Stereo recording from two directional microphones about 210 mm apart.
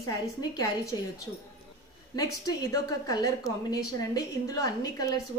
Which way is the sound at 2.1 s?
15° left (ahead or behind).